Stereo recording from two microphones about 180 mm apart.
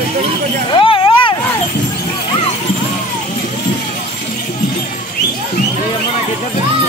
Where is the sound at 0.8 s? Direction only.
30° left (ahead or behind).